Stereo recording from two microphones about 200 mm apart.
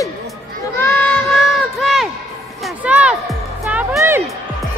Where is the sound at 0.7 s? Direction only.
5° left (ahead or behind).